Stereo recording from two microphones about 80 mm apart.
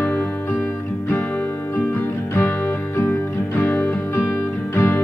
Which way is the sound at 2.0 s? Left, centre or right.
Left.